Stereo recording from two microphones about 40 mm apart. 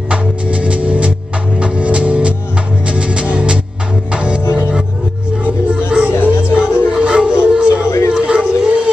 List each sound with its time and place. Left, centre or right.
0.1 s music: right
5.9 s music: right
7.4 s howl: right